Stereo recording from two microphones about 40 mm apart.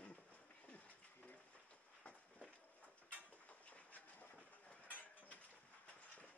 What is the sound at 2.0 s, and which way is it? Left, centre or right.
Walk, left.